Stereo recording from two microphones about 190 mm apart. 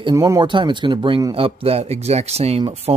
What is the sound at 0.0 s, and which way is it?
Speech, 20° right (ahead or behind).